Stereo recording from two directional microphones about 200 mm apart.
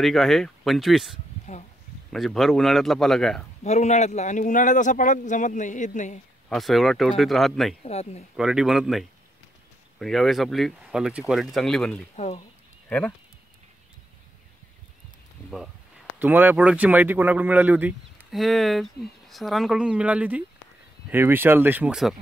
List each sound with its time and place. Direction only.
0.0 s speech: centre (ahead or behind)
1.5 s a man's voice: 35° left (ahead or behind)
2.1 s speech: centre (ahead or behind)
3.6 s a man's voice: 35° left (ahead or behind)
6.5 s speech: centre (ahead or behind)
7.8 s a man's voice: 30° left (ahead or behind)
8.4 s speech: 5° right (ahead or behind)
16.2 s speech: 10° right (ahead or behind)